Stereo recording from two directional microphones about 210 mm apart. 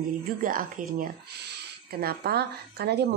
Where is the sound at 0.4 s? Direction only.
40° right (ahead or behind).